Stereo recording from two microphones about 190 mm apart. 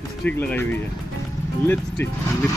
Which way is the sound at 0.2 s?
10° left (ahead or behind).